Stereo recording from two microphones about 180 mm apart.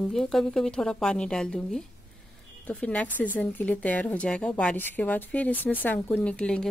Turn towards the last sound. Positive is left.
turn(degrees=5)  # may be behind; listen again after turning